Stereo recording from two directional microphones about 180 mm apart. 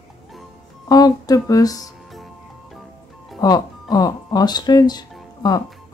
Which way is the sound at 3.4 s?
20° left (ahead or behind).